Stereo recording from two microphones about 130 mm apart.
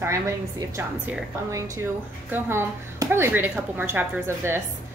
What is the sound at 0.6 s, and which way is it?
Speech, 20° right (ahead or behind).